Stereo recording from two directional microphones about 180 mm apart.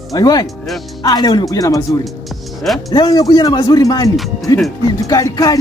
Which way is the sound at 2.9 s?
20° left (ahead or behind).